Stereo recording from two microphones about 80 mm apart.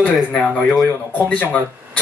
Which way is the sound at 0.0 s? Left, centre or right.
Centre.